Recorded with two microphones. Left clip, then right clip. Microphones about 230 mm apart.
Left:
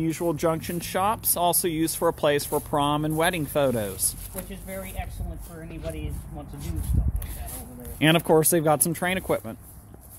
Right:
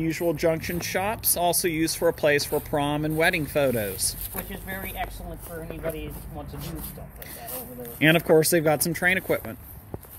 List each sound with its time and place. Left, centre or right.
0.0 s speech: left
4.5 s speech: left
8.0 s speech: centre